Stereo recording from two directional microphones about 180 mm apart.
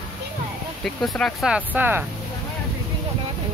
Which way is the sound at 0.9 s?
5° left (ahead or behind).